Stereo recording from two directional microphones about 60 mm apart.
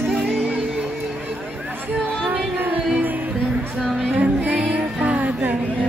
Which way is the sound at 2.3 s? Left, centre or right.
Right.